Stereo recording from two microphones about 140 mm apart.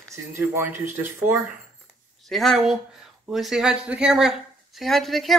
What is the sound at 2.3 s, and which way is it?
Speech, centre (ahead or behind).